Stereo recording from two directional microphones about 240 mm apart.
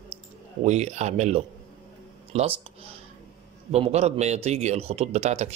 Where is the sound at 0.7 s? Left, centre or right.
Right.